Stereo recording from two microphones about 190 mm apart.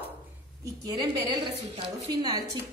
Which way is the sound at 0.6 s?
20° right (ahead or behind).